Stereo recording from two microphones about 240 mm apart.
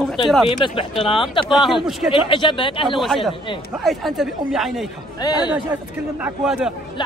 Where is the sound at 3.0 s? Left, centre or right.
Centre.